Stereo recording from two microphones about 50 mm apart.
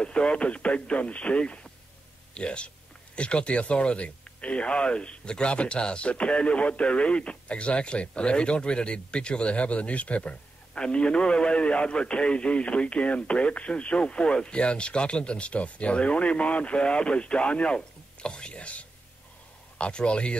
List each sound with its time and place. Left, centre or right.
0.0 s a man's voice: left